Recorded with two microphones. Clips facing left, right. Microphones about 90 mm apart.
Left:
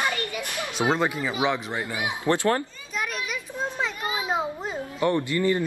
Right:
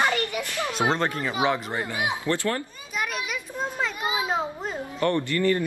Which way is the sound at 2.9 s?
5° right (ahead or behind).